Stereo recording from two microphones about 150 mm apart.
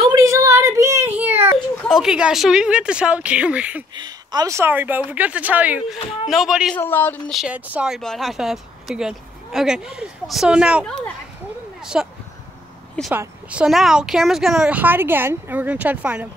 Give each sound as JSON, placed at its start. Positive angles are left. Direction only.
{"t": 0.1, "sound": "a sound", "side_deg": -20}
{"t": 1.8, "sound": "speech", "side_deg": 0}
{"t": 3.9, "sound": "speech", "side_deg": -30}
{"t": 6.8, "sound": "speech", "side_deg": 15}
{"t": 7.3, "sound": "speech", "side_deg": -10}
{"t": 13.1, "sound": "speech", "side_deg": -10}